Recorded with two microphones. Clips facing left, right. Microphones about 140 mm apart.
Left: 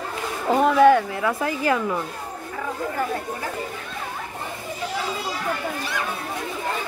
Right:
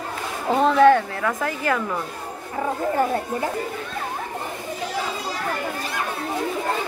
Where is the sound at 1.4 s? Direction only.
20° left (ahead or behind).